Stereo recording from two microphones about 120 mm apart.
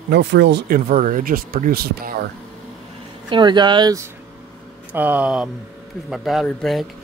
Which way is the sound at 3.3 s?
40° right (ahead or behind).